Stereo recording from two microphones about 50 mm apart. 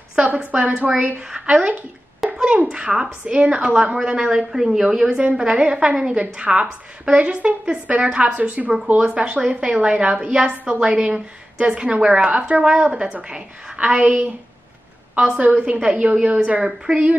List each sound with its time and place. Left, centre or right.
0.5 s a woman's voice: right
1.3 s a woman's voice: centre
9.0 s a woman's voice: centre
15.3 s a woman's voice: right